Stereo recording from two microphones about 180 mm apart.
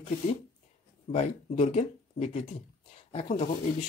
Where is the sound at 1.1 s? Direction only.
35° left (ahead or behind).